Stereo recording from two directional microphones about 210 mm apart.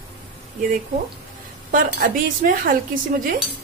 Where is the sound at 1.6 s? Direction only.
40° right (ahead or behind).